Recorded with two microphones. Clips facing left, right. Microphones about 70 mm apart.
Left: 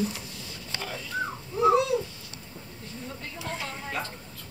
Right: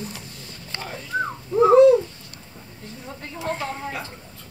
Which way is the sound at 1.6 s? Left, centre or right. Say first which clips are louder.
Right 10 dB; right.